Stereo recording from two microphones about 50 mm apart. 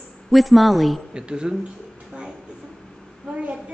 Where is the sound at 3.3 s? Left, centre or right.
Right.